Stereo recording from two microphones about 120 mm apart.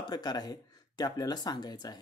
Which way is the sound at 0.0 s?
35° left (ahead or behind).